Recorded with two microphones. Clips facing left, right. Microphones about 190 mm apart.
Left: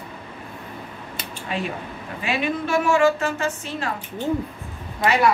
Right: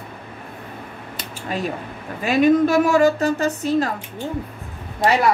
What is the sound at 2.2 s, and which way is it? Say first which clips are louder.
A woman's voice: right 10 dB; 40° right (ahead or behind).